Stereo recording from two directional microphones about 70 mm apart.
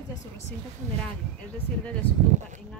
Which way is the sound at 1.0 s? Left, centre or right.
Centre.